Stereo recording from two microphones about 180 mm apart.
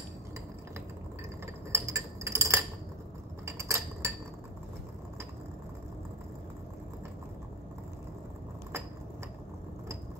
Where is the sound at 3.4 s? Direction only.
15° right (ahead or behind).